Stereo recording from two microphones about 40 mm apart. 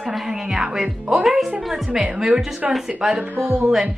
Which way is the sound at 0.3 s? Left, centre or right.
Centre.